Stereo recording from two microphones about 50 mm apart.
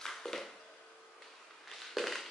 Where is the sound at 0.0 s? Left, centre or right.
Centre.